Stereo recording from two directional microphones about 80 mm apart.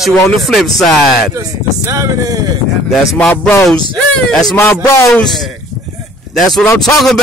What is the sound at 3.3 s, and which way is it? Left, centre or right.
Speech, left.